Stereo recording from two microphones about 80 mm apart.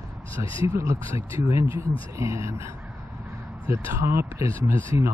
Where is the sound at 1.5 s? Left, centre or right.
Right.